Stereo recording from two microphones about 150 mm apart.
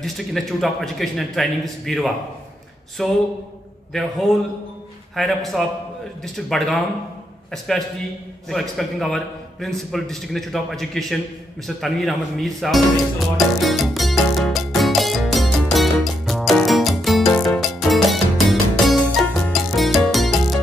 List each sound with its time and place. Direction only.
0.0 s a man's voice: centre (ahead or behind)
11.6 s music: centre (ahead or behind)